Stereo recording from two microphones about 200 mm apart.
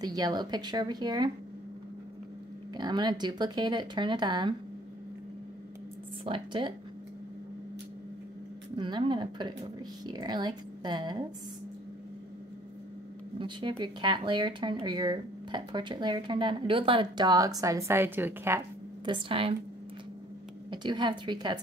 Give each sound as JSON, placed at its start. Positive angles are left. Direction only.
{"t": 0.0, "sound": "speech", "side_deg": -20}
{"t": 2.7, "sound": "speech", "side_deg": -20}
{"t": 6.2, "sound": "speech", "side_deg": -25}
{"t": 8.7, "sound": "speech", "side_deg": -25}
{"t": 13.4, "sound": "speech", "side_deg": -25}
{"t": 19.0, "sound": "speech", "side_deg": -25}
{"t": 20.7, "sound": "speech", "side_deg": -20}